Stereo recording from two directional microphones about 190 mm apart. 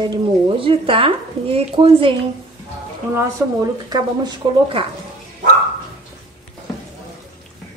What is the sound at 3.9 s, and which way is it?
Speech, 20° right (ahead or behind).